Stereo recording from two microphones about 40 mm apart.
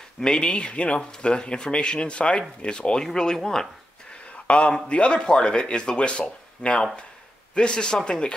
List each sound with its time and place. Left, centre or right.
0.2 s speech: left
4.1 s a sound: left
4.8 s speech: left